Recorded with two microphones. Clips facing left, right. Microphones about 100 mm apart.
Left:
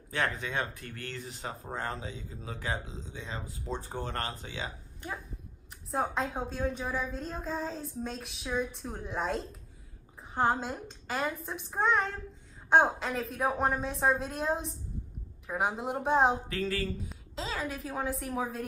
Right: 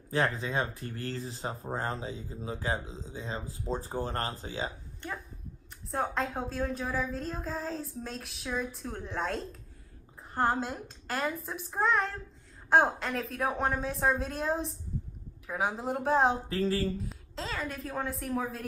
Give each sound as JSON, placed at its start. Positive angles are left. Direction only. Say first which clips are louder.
{"t": 0.1, "sound": "speech", "louder": "right 3 dB", "side_deg": -30}
{"t": 5.9, "sound": "a woman's voice", "louder": "even", "side_deg": 0}
{"t": 16.4, "sound": "speech", "louder": "right 3 dB", "side_deg": -35}
{"t": 17.0, "sound": "a woman's voice", "louder": "even", "side_deg": 0}